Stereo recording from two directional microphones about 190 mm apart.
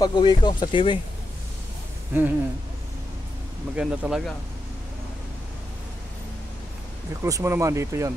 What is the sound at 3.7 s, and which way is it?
Speech, 5° right (ahead or behind).